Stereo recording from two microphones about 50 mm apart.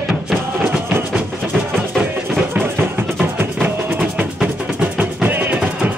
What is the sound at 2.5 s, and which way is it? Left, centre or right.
Music, right.